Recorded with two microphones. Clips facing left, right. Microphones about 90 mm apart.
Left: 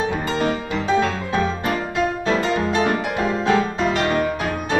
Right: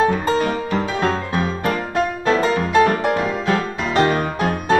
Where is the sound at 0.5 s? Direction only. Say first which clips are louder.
Even; 40° right (ahead or behind).